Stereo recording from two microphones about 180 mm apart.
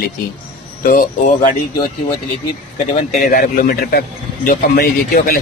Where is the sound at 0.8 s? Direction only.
50° left (ahead or behind).